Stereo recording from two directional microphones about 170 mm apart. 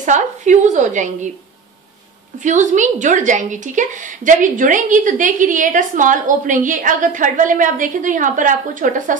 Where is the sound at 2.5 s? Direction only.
45° right (ahead or behind).